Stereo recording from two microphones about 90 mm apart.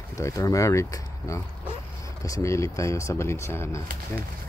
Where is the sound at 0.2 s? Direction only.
40° left (ahead or behind).